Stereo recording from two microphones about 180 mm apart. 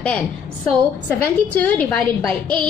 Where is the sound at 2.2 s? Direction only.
25° right (ahead or behind).